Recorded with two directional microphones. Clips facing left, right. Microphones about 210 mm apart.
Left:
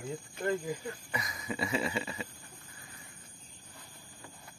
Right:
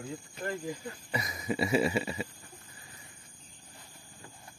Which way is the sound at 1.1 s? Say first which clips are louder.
Right 8 dB; 25° right (ahead or behind).